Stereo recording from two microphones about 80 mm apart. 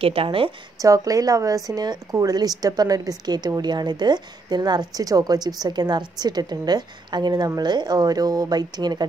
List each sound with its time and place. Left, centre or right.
0.7 s a woman's voice: right